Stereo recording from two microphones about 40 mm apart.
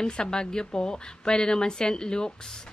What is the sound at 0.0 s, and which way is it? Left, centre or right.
A woman's voice, centre.